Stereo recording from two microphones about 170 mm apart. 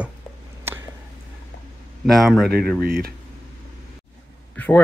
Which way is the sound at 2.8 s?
65° right (ahead or behind).